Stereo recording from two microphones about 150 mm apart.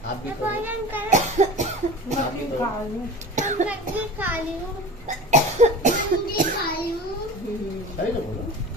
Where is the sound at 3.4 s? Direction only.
55° right (ahead or behind).